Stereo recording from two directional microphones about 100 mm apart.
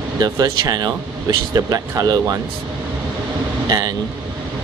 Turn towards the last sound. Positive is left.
turn(degrees=-40)  # may be behind; listen again after turning